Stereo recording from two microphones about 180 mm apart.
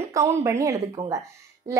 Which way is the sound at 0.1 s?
15° right (ahead or behind).